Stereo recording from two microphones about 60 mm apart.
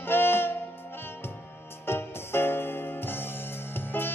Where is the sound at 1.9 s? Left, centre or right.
Left.